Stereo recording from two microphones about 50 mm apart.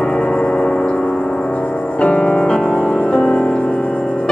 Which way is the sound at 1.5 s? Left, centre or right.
Left.